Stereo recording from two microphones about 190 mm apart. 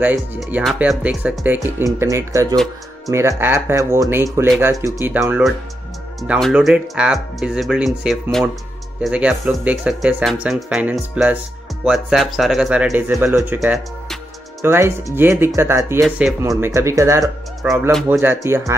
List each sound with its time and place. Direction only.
0.4 s speech: 5° right (ahead or behind)
16.0 s speech: centre (ahead or behind)
16.4 s speech: 15° right (ahead or behind)